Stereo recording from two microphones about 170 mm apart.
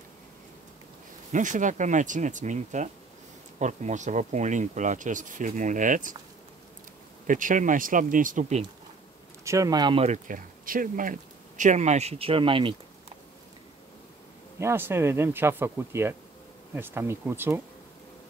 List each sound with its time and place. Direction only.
1.3 s speech: 50° right (ahead or behind)
7.2 s speech: 50° right (ahead or behind)
9.4 s speech: 20° right (ahead or behind)
10.0 s speech: 45° right (ahead or behind); by 12.7 s 30° right (ahead or behind)
14.6 s speech: 15° right (ahead or behind)